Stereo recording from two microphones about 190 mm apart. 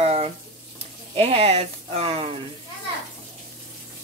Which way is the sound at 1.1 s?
30° right (ahead or behind).